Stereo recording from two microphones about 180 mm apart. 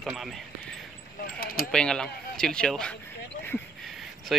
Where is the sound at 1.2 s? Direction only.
55° left (ahead or behind).